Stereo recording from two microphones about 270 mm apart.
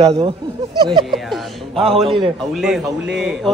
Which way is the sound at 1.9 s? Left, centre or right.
Centre.